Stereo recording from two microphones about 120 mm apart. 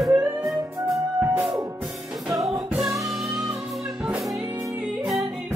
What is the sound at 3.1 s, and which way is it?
Music, centre (ahead or behind).